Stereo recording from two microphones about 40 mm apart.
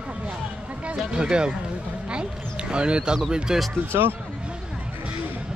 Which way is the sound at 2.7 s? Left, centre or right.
Right.